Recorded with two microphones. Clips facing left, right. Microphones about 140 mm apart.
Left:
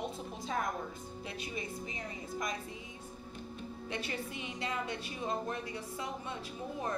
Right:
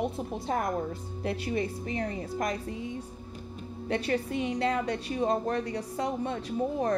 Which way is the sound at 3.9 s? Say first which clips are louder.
Right 12 dB; 55° right (ahead or behind).